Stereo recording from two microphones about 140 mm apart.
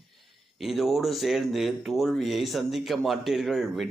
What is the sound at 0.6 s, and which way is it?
Speech, centre (ahead or behind).